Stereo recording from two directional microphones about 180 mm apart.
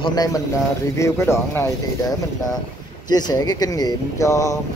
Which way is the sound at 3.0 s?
20° left (ahead or behind).